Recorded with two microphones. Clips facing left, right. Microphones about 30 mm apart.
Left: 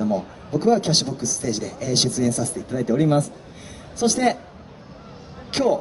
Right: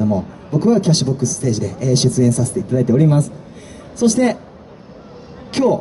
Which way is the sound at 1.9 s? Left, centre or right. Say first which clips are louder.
Right 6 dB; left.